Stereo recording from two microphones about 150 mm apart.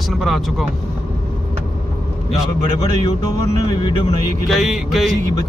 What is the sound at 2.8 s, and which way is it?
Speech, 30° left (ahead or behind).